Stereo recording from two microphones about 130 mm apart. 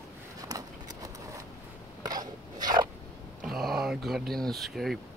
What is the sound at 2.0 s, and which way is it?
Biting, 30° right (ahead or behind).